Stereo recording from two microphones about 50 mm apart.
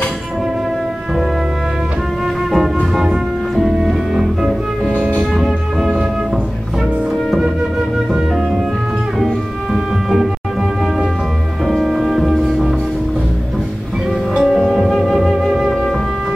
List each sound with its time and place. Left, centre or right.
2.5 s music: centre
4.8 s music: right
5.3 s music: centre
11.6 s music: centre
14.3 s music: centre